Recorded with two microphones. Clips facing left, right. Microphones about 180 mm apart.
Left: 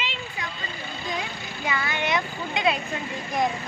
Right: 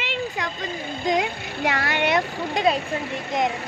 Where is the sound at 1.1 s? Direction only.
80° right; by 2.2 s 65° right (ahead or behind).